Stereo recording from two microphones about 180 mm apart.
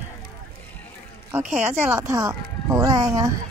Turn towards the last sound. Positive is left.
turn(degrees=-20)  # may be behind; listen again after turning